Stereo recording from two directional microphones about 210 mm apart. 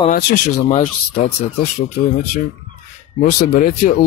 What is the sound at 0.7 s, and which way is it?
Speech, 35° left (ahead or behind).